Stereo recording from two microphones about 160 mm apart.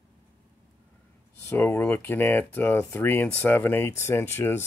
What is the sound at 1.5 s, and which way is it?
Speech, 10° left (ahead or behind).